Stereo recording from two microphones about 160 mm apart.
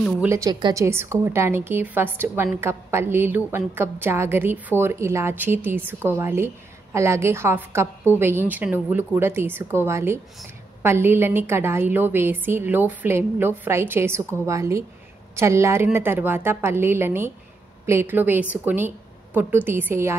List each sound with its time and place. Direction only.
0.2 s a woman's voice: 20° right (ahead or behind)